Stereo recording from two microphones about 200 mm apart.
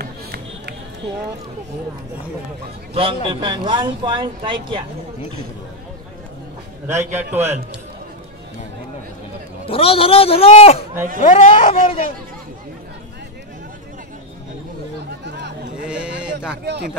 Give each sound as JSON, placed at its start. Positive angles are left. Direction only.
{"t": 0.0, "sound": "run", "side_deg": -50}
{"t": 2.9, "sound": "speech", "side_deg": -25}
{"t": 7.0, "sound": "a man's voice", "side_deg": -10}
{"t": 9.7, "sound": "a man's voice", "side_deg": 30}
{"t": 15.2, "sound": "a sound", "side_deg": -60}
{"t": 15.8, "sound": "a sound", "side_deg": -5}